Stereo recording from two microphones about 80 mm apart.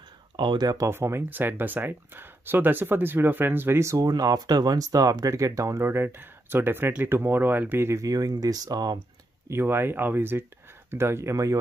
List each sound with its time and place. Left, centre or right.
0.4 s speech: right
0.8 s speech: right
4.1 s speech: right
5.9 s speech: right
9.5 s speech: right